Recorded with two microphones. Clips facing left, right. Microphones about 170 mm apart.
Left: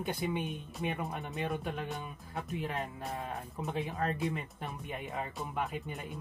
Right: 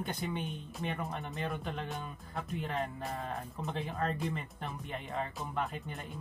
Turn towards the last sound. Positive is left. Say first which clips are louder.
# left 2 dB
turn(degrees=5)  # may be behind; listen again after turning